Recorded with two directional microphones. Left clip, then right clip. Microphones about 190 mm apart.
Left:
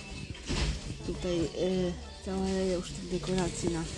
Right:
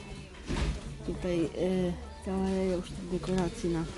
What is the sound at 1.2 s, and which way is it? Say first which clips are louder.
Speech: even; 10° right (ahead or behind).